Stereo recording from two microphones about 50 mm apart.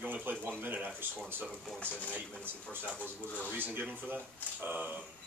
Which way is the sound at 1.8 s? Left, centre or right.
Left.